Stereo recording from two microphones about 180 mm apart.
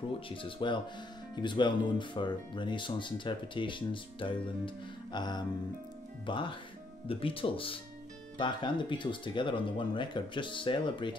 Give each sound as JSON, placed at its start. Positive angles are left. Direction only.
{"t": 0.3, "sound": "speech", "side_deg": 30}